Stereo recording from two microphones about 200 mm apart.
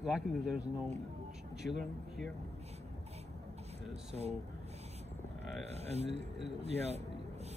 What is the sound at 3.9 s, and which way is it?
Speech, 35° right (ahead or behind).